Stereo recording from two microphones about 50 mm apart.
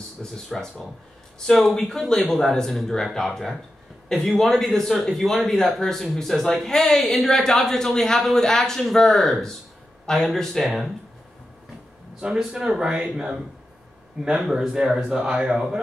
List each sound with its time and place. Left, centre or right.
0.2 s a man's voice: centre
12.2 s speech: centre
14.4 s speech: centre